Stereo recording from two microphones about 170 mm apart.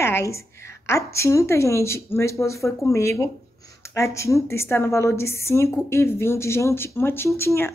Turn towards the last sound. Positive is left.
turn(degrees=15)  # may be behind; listen again after turning